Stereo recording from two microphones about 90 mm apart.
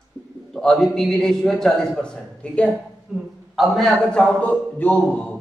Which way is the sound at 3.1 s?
5° right (ahead or behind).